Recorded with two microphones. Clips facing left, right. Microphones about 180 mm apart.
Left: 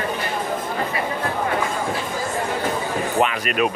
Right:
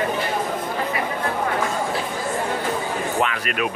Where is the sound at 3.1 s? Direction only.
20° left (ahead or behind).